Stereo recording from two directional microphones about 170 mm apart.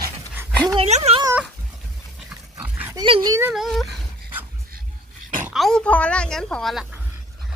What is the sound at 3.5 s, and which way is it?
Dog, centre (ahead or behind).